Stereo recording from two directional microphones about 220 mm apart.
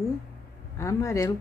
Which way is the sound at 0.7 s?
15° left (ahead or behind).